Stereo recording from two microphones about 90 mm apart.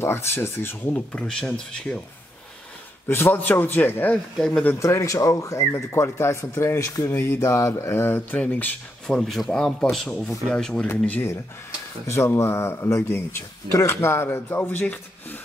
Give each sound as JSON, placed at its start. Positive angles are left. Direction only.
{"t": 0.0, "sound": "speech", "side_deg": 25}
{"t": 1.1, "sound": "speech", "side_deg": 5}
{"t": 3.1, "sound": "speech", "side_deg": 25}
{"t": 4.7, "sound": "speech", "side_deg": 35}
{"t": 9.0, "sound": "speech", "side_deg": 5}
{"t": 12.1, "sound": "speech", "side_deg": 30}